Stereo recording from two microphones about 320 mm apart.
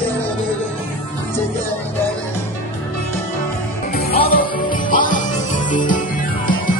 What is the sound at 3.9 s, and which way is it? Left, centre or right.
Music, left.